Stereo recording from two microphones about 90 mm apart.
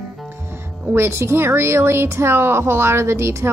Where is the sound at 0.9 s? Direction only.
30° right (ahead or behind).